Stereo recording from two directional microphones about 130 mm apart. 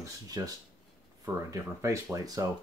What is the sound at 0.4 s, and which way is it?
Speech, 25° right (ahead or behind).